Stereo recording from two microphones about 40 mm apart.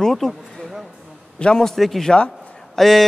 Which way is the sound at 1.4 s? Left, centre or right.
Left.